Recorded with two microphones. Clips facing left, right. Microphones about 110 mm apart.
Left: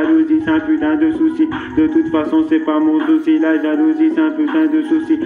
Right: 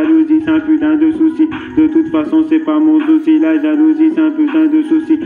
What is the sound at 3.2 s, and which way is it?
Music, 45° right (ahead or behind).